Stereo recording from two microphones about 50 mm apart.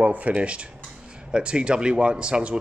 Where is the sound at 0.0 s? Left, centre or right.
Right.